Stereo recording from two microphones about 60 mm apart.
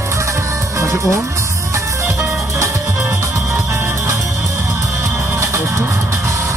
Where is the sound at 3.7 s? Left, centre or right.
Right.